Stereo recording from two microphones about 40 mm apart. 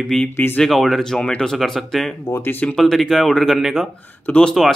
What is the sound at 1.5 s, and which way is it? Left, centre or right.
Speech, centre.